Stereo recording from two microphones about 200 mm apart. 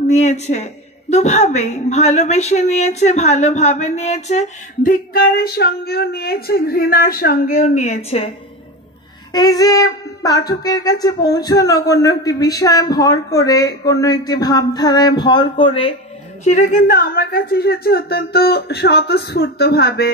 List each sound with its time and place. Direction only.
0.1 s a woman's voice: 35° left (ahead or behind)
9.3 s speech: 20° left (ahead or behind)
16.4 s a woman's voice: 40° left (ahead or behind)